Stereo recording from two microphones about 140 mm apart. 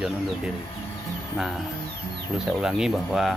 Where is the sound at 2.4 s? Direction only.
5° right (ahead or behind).